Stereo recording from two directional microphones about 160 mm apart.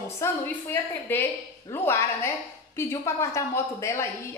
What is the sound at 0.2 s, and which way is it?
A woman's voice, 15° left (ahead or behind).